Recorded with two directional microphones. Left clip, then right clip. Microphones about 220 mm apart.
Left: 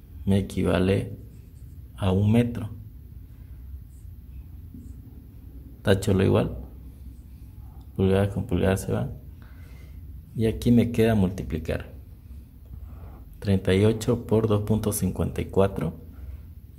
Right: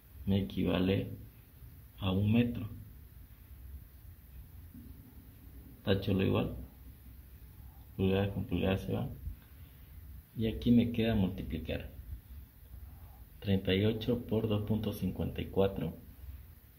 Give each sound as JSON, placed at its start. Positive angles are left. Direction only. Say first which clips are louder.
{"t": 0.2, "sound": "speech", "louder": "left 9 dB", "side_deg": 15}
{"t": 5.8, "sound": "speech", "louder": "left 10 dB", "side_deg": 20}
{"t": 7.9, "sound": "speech", "louder": "left 9 dB", "side_deg": 15}
{"t": 10.4, "sound": "speech", "louder": "left 8 dB", "side_deg": 15}
{"t": 13.4, "sound": "speech", "louder": "left 9 dB", "side_deg": 15}